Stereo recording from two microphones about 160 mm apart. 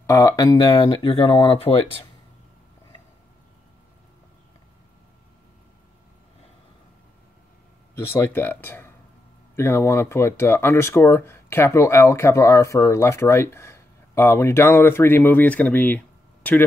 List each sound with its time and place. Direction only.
0.0 s speech: 20° left (ahead or behind); by 1.8 s 35° left (ahead or behind)
7.9 s speech: 15° left (ahead or behind)